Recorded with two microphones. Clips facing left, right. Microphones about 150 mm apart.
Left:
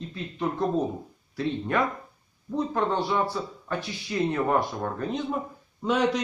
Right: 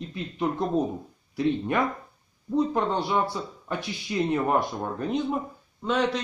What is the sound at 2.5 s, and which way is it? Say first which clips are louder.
Speech: right 2 dB; 15° right (ahead or behind).